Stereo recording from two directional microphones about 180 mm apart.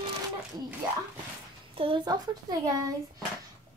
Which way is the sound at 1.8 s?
25° right (ahead or behind).